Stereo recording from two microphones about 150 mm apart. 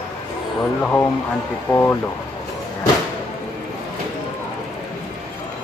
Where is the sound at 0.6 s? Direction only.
15° left (ahead or behind).